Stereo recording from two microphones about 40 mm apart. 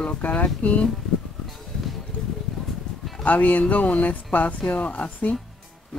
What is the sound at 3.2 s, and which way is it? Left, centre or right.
Speech, left.